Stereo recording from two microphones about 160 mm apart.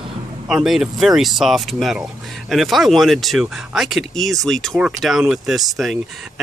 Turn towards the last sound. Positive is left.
turn(degrees=0)  # may be behind; listen again after turning